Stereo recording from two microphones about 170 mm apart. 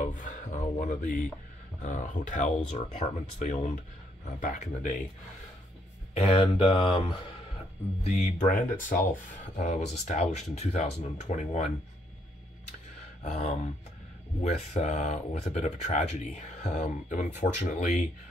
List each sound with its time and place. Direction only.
0.0 s speech: 50° left (ahead or behind)
6.3 s speech: 30° left (ahead or behind)
8.0 s speech: 45° left (ahead or behind)
13.2 s speech: 40° left (ahead or behind)